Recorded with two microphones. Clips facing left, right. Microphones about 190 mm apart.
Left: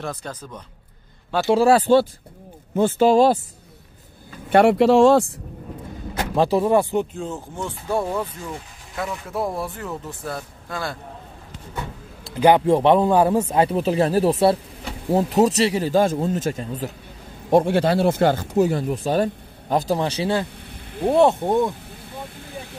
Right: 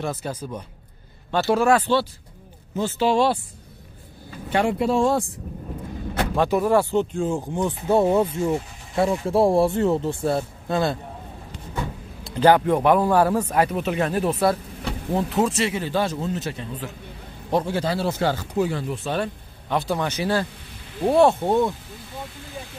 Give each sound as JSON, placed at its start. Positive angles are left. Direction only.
{"t": 0.0, "sound": "a man's voice", "side_deg": -5}
{"t": 1.5, "sound": "speech", "side_deg": 35}
{"t": 2.7, "sound": "speech", "side_deg": 50}
{"t": 4.5, "sound": "speech", "side_deg": 65}
{"t": 6.3, "sound": "speech", "side_deg": 30}
{"t": 6.7, "sound": "speech", "side_deg": 20}
{"t": 7.2, "sound": "speech", "side_deg": -15}
{"t": 12.4, "sound": "speech", "side_deg": 15}
{"t": 17.5, "sound": "speech", "side_deg": 55}